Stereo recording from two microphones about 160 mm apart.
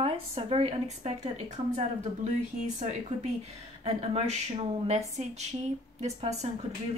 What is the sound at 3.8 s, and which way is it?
A woman's voice, 40° right (ahead or behind).